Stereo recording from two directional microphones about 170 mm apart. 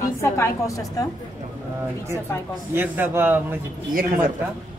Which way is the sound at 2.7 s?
10° right (ahead or behind).